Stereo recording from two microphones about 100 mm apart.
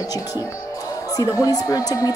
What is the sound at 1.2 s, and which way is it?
Speech, 35° left (ahead or behind).